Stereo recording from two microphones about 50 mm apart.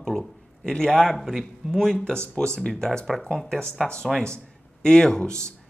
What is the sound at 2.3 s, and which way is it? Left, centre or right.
Speech, centre.